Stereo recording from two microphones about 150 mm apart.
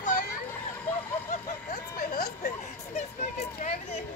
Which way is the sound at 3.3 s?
45° left (ahead or behind).